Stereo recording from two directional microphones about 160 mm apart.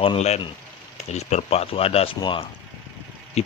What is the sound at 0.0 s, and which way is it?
Speech, 40° left (ahead or behind).